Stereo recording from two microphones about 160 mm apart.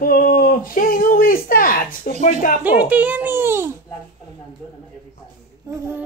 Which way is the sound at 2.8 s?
10° right (ahead or behind).